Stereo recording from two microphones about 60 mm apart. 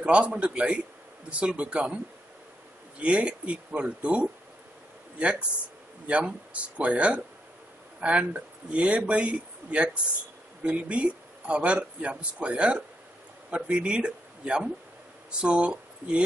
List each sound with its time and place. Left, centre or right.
0.0 s speech: centre
3.0 s speech: centre
6.0 s speech: centre